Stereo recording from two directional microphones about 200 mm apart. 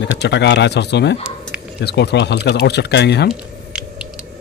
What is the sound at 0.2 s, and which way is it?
Speech, 60° left (ahead or behind).